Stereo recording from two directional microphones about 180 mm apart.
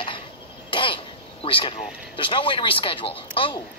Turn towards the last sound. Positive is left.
turn(degrees=30)  # may be behind; listen again after turning